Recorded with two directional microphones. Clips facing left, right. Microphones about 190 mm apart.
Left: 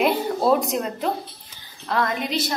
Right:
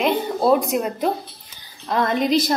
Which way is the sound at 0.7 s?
10° right (ahead or behind).